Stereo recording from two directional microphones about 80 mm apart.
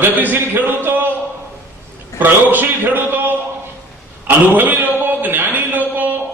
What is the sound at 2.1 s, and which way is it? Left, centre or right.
A man's voice, right.